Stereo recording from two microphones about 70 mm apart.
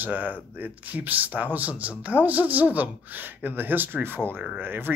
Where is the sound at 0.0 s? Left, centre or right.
Right.